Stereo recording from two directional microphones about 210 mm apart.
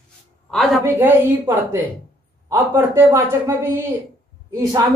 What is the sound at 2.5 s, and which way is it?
Speech, 10° right (ahead or behind).